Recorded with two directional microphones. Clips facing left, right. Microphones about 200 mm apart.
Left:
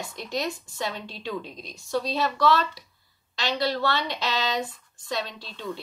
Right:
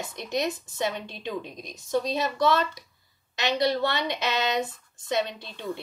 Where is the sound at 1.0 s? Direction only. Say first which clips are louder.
Right 1 dB; 55° right (ahead or behind).